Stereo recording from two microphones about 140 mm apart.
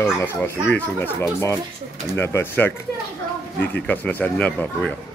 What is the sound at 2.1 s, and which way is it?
Speech, 15° left (ahead or behind).